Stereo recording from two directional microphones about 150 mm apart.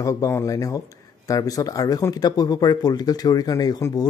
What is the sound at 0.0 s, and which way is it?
Speech, 20° left (ahead or behind).